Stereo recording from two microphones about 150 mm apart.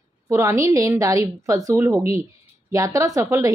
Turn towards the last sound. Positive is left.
turn(degrees=-20)  # may be behind; listen again after turning